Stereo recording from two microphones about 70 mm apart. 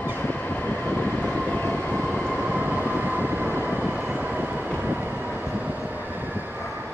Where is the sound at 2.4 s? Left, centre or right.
Right.